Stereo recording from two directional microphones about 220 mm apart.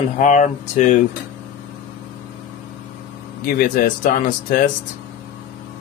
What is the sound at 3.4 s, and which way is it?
Speech, 40° left (ahead or behind).